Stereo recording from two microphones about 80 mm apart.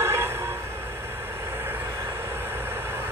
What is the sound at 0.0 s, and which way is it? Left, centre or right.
Train, right.